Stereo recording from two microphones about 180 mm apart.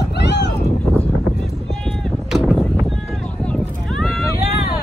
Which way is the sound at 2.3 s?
Centre (ahead or behind).